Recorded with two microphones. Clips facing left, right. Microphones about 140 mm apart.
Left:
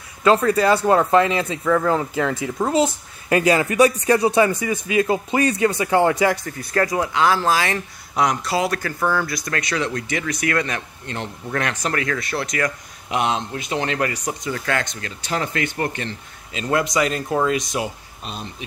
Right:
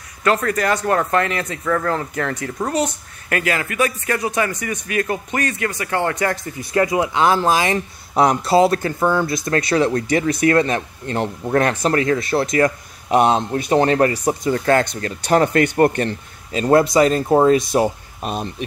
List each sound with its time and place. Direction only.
0.8 s speech: 20° left (ahead or behind)
1.6 s speech: 10° left (ahead or behind)
3.3 s speech: 20° left (ahead or behind)
6.6 s speech: 15° right (ahead or behind)
8.1 s speech: 30° right (ahead or behind); by 16.6 s 50° right (ahead or behind)
16.6 s speech: 35° right (ahead or behind)
17.7 s speech: 45° right (ahead or behind)